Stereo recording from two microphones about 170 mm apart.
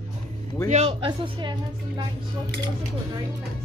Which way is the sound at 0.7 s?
35° right (ahead or behind).